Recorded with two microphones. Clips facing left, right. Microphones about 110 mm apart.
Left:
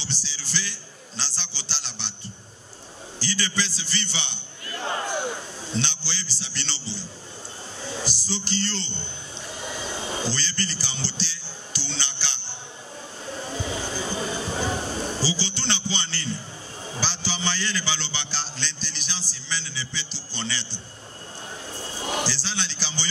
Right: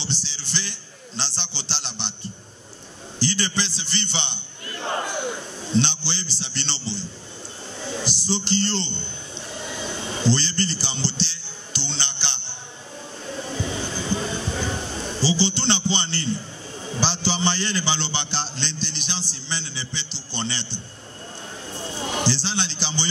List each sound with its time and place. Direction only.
0.0 s a man's voice: 25° right (ahead or behind)
3.2 s a man's voice: 25° right (ahead or behind)
5.7 s a man's voice: 25° right (ahead or behind)
7.8 s a sound: 25° right (ahead or behind)
13.5 s music: 25° right (ahead or behind)
14.7 s a man's voice: 25° right (ahead or behind)
21.7 s a sound: 25° right (ahead or behind)